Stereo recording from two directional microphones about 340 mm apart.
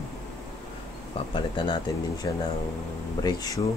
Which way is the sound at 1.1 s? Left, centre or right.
Centre.